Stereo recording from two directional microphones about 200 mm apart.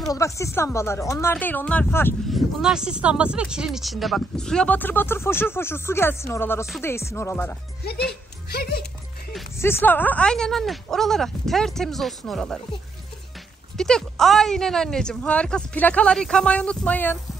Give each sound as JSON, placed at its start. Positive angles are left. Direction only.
{"t": 0.0, "sound": "speech", "side_deg": 15}
{"t": 2.2, "sound": "speech", "side_deg": 0}
{"t": 8.5, "sound": "speech", "side_deg": 50}
{"t": 9.6, "sound": "speech", "side_deg": 10}
{"t": 13.7, "sound": "speech", "side_deg": 5}